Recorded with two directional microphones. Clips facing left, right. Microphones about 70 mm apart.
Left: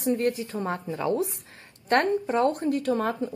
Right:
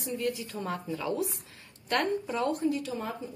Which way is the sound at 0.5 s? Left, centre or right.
Left.